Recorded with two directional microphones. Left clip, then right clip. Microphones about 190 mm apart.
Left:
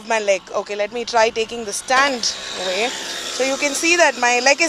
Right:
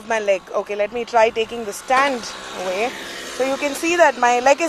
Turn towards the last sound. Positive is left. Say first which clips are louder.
# right 1 dB
turn(degrees=0)  # may be behind; listen again after turning